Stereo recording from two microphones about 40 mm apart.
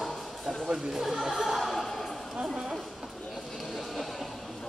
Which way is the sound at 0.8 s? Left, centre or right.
Centre.